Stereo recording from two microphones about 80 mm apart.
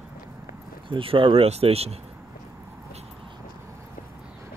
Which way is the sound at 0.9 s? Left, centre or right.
Right.